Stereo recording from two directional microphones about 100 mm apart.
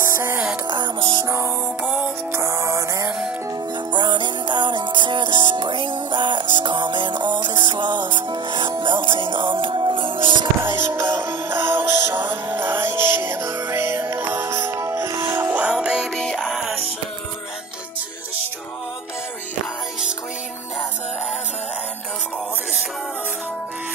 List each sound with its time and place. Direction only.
0.7 s music: 55° right (ahead or behind)
1.2 s music: 30° right (ahead or behind)
3.1 s music: 10° right (ahead or behind)
3.9 s music: 50° right (ahead or behind)
10.6 s music: 20° right (ahead or behind)
16.2 s music: 5° left (ahead or behind)